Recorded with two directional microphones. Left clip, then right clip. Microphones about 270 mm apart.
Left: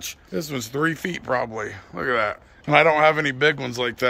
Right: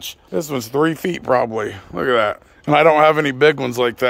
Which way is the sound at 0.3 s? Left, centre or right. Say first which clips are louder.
Right 7 dB; centre.